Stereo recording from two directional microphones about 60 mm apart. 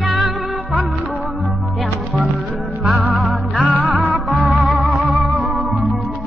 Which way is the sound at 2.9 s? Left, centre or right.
Right.